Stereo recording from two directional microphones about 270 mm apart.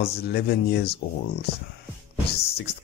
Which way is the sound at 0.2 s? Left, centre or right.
Left.